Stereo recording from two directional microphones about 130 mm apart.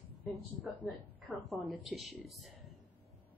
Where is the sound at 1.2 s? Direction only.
Centre (ahead or behind).